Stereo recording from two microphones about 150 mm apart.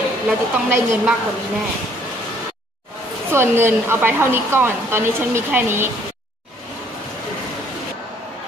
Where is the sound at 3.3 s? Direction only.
15° right (ahead or behind).